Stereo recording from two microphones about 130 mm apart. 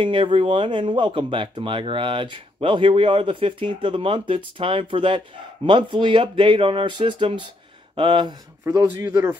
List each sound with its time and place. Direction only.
0.0 s speech: 40° right (ahead or behind)
8.6 s speech: 25° right (ahead or behind)